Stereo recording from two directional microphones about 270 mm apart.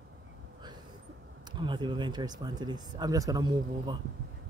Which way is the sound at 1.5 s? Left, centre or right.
Centre.